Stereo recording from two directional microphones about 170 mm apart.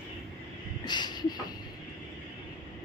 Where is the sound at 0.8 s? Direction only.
25° left (ahead or behind).